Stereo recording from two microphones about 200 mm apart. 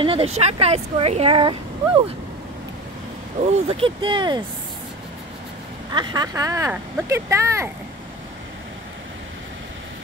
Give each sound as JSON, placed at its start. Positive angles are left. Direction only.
{"t": 0.0, "sound": "speech", "side_deg": -30}
{"t": 3.3, "sound": "speech", "side_deg": -30}
{"t": 5.9, "sound": "speech", "side_deg": -20}